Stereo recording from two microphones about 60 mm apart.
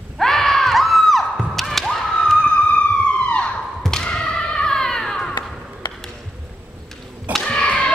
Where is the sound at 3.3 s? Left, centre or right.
Centre.